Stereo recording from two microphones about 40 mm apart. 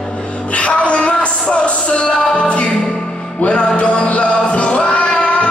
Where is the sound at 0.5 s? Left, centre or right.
Left.